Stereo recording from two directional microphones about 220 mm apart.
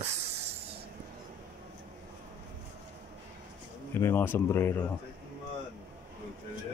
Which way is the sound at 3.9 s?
10° left (ahead or behind).